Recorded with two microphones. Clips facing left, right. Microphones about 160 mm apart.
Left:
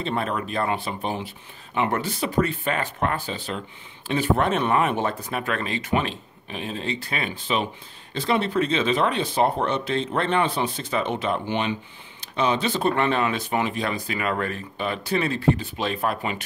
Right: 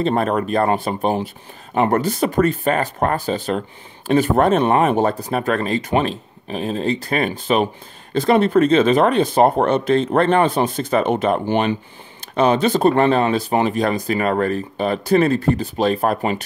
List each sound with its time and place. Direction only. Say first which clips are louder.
0.0 s speech: right 8 dB; 45° right (ahead or behind)